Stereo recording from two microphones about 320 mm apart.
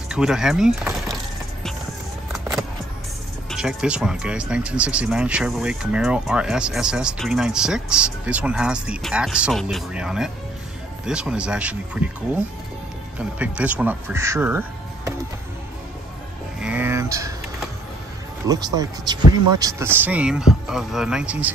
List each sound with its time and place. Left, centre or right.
0.1 s speech: centre
2.3 s vehicle: centre
3.4 s speech: centre
13.2 s speech: centre
16.5 s a sound: centre
18.8 s speech: centre